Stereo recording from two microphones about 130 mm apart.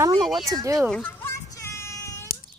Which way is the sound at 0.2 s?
Centre (ahead or behind).